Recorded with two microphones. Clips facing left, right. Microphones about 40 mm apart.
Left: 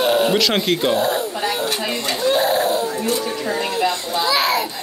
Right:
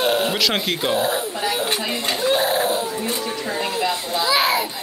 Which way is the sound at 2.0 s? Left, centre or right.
Centre.